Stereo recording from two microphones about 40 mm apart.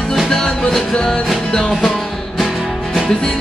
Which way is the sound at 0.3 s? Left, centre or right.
Centre.